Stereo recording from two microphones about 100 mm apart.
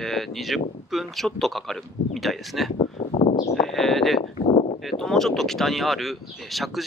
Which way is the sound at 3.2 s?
90° left.